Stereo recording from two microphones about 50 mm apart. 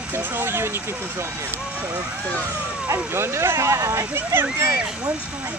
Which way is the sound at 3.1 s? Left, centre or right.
Right.